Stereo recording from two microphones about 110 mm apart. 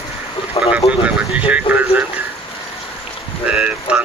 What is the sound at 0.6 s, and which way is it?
Speech, 45° left (ahead or behind).